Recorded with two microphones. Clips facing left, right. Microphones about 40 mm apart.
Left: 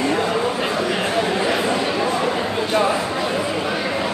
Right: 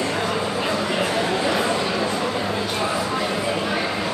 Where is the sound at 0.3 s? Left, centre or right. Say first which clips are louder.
Left 2 dB; centre.